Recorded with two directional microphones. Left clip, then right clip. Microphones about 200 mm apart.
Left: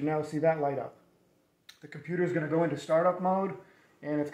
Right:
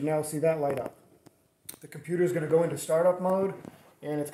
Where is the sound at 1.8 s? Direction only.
45° right (ahead or behind).